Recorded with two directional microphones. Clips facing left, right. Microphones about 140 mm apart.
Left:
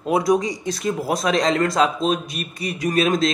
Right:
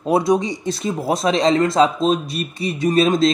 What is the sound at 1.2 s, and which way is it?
Speech, 25° right (ahead or behind).